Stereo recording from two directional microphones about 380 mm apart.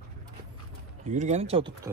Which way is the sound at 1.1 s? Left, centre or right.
Centre.